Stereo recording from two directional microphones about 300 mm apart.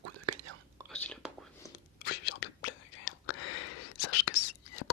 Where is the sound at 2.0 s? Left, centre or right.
Left.